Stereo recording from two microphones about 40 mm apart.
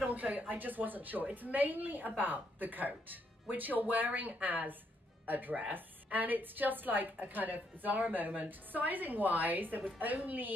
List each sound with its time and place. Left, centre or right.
0.0 s a woman's voice: right